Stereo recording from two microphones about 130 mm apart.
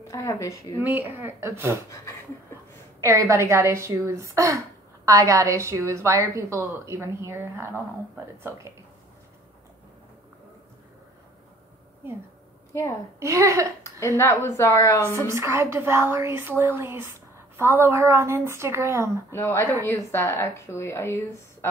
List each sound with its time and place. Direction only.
0.0 s speech: 25° left (ahead or behind)
0.7 s speech: 15° right (ahead or behind)
3.0 s a woman's voice: 20° right (ahead or behind)
12.7 s speech: 20° left (ahead or behind)
13.2 s a woman's voice: 25° right (ahead or behind)
13.8 s speech: 20° left (ahead or behind)
15.1 s a woman's voice: 20° right (ahead or behind)
19.3 s speech: 20° left (ahead or behind)